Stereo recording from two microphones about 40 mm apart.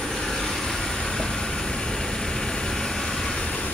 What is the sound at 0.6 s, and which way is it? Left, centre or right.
Vehicle, centre.